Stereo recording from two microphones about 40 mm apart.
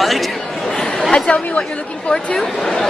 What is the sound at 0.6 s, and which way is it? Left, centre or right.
Speech, centre.